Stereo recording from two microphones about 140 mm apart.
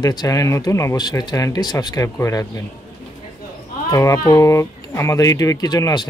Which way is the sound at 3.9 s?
25° left (ahead or behind).